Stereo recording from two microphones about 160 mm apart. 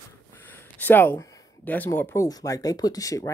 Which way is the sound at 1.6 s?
10° left (ahead or behind).